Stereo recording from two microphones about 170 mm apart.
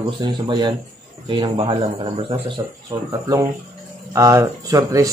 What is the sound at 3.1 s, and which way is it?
Speech, 20° right (ahead or behind).